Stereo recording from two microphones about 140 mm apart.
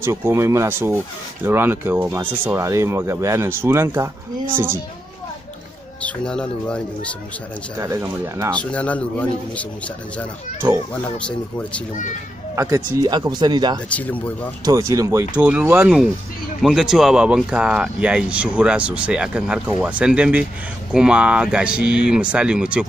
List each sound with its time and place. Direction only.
0.0 s speech: 20° right (ahead or behind)
6.0 s speech: 5° left (ahead or behind)
7.8 s speech: 20° right (ahead or behind)
8.5 s speech: 10° left (ahead or behind)
10.9 s speech: 10° left (ahead or behind)
12.5 s speech: 25° right (ahead or behind)
13.8 s speech: 10° left (ahead or behind)
14.6 s speech: 25° right (ahead or behind)
15.3 s speech: 10° right (ahead or behind)